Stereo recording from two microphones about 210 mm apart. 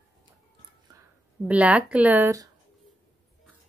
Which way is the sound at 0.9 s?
20° right (ahead or behind).